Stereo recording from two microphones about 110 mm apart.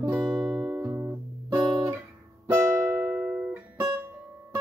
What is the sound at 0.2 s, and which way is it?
Music, 40° right (ahead or behind).